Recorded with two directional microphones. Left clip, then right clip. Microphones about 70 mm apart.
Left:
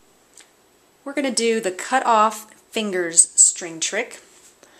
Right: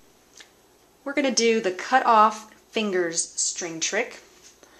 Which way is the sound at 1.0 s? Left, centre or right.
Left.